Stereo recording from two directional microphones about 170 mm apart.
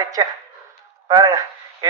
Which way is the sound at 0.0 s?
25° right (ahead or behind).